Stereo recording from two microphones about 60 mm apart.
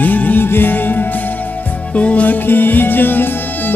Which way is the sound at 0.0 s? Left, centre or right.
Left.